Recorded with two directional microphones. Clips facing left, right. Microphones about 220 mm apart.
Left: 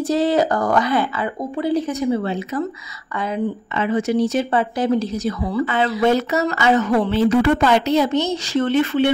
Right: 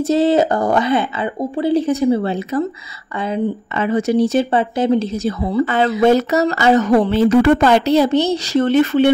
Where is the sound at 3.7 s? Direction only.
40° right (ahead or behind); by 5.6 s 25° right (ahead or behind).